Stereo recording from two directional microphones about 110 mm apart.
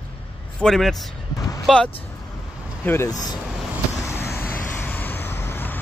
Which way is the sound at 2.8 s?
20° left (ahead or behind).